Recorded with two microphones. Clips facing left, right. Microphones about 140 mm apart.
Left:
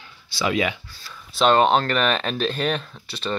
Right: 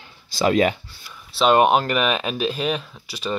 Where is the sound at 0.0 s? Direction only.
45° right (ahead or behind).